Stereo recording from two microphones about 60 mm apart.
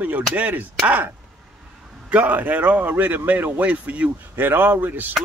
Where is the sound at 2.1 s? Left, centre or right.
Right.